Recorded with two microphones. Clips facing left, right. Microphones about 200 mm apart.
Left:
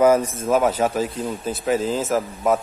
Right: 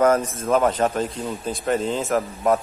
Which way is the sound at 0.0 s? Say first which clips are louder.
Left 2 dB; 10° left (ahead or behind).